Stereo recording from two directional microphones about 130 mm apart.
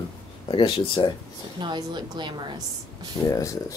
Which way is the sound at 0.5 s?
40° left (ahead or behind).